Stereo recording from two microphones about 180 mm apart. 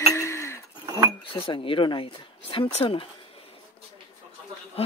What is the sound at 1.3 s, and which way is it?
Speech, 30° left (ahead or behind).